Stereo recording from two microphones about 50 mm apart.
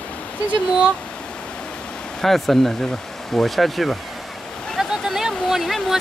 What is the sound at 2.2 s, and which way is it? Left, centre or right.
Speech, centre.